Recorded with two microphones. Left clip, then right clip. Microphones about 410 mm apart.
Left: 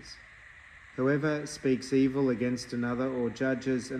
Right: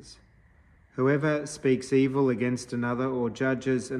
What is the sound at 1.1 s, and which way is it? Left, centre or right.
Speech, centre.